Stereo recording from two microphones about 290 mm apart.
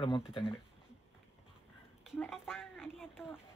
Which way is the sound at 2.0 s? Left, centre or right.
Centre.